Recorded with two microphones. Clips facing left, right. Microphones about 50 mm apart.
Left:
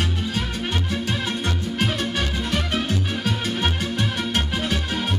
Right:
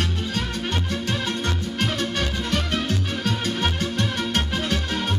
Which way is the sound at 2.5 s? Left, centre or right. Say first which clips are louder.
Left 1 dB; centre.